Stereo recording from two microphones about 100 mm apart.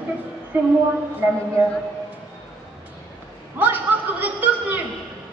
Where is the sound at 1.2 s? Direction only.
25° right (ahead or behind).